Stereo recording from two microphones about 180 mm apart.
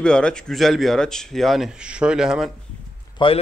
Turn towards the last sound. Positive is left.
turn(degrees=30)  # may be behind; listen again after turning